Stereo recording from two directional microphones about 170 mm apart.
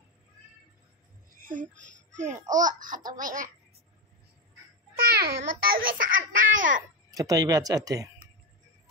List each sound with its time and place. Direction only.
1.3 s a sound: 50° right (ahead or behind)
2.1 s a child's voice: 45° right (ahead or behind)
4.9 s a child's voice: 65° right (ahead or behind)
7.1 s speech: 20° right (ahead or behind)